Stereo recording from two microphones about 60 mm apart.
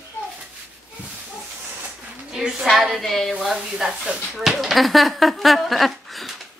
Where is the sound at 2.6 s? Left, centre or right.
Centre.